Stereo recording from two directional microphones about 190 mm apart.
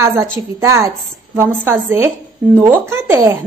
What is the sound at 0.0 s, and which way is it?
A woman's voice, 15° right (ahead or behind).